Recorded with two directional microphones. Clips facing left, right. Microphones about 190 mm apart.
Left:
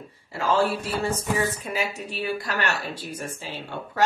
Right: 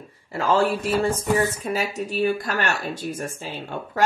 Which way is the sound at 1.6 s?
40° right (ahead or behind).